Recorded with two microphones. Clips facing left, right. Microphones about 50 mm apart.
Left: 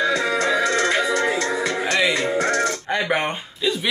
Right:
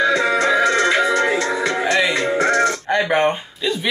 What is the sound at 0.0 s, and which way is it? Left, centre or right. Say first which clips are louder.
Music: right 4 dB; right.